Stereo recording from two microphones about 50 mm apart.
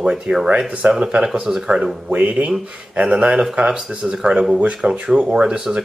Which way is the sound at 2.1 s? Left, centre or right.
Right.